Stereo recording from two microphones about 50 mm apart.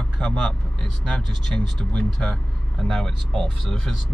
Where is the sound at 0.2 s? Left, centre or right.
Centre.